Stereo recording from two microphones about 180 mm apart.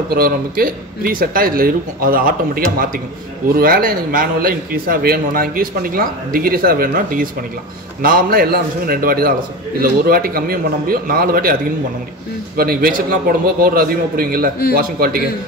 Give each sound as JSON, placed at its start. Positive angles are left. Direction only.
{"t": 0.1, "sound": "a man's voice", "side_deg": -55}
{"t": 12.5, "sound": "a man's voice", "side_deg": -55}